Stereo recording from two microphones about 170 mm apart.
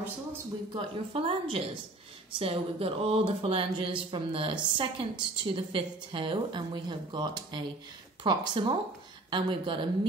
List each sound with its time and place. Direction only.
0.7 s speech: 30° right (ahead or behind)